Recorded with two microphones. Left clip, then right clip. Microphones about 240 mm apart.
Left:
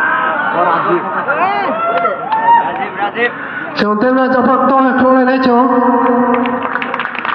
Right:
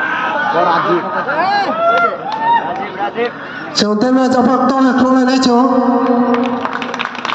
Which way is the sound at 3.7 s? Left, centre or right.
Right.